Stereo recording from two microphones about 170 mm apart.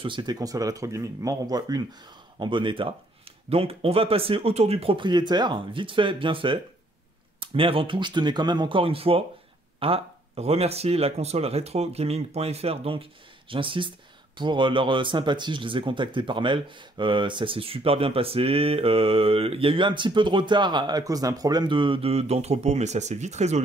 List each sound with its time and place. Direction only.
0.0 s speech: 30° right (ahead or behind)